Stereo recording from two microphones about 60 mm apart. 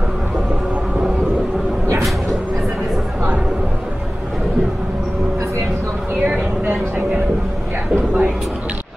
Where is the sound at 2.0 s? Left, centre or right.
Centre.